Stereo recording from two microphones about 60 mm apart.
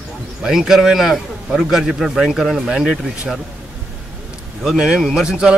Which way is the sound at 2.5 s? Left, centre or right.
Centre.